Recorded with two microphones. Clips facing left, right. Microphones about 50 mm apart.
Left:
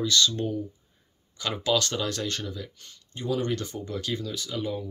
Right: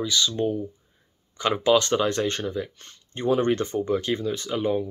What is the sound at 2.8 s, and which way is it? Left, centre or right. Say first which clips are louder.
Speech: right 6 dB; right.